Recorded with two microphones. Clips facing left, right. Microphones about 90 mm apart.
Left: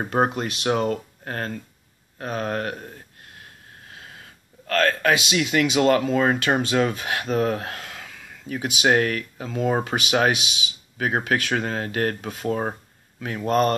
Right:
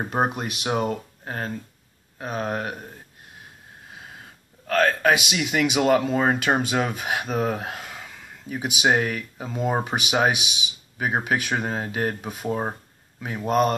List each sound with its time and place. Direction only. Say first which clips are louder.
0.1 s speech: left 3 dB; 15° right (ahead or behind)
4.6 s speech: right 1 dB; 20° right (ahead or behind)
8.9 s speech: left 3 dB; 90° left
9.4 s speech: left 2 dB; 20° right (ahead or behind)